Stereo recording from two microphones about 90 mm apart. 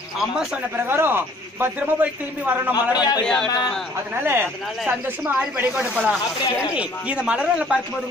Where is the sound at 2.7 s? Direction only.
45° left (ahead or behind).